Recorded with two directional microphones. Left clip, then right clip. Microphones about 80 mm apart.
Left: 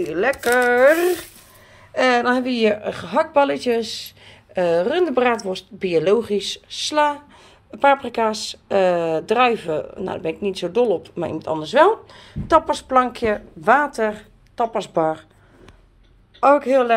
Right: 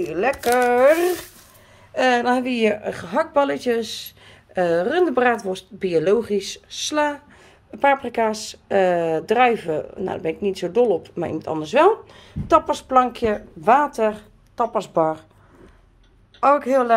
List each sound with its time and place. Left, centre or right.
0.0 s speech: centre
3.5 s speech: right
5.9 s speech: right
16.3 s a man's voice: centre